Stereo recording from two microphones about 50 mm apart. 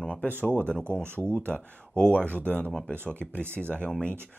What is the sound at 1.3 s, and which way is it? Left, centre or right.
Speech, left.